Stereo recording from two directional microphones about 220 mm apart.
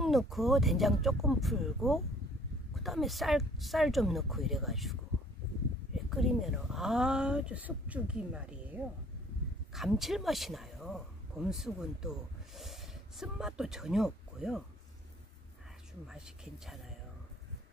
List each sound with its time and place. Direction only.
0.0 s speech: centre (ahead or behind)
6.0 s speech: centre (ahead or behind)
16.1 s speech: centre (ahead or behind)